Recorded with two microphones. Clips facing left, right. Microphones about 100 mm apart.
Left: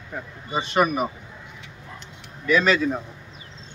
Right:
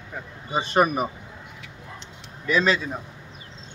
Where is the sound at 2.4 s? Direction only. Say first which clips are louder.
Left 2 dB; 30° right (ahead or behind).